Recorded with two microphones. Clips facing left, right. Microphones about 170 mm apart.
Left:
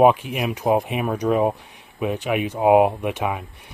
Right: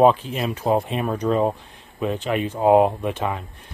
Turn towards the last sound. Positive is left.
turn(degrees=10)  # may be behind; listen again after turning